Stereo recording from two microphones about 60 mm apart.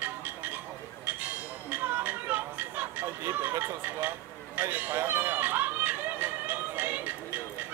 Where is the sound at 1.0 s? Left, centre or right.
Right.